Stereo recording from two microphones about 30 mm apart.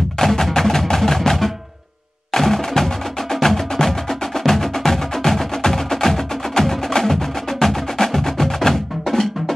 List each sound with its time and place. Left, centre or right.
0.2 s music: centre
2.3 s wood block: centre
8.6 s percussion: centre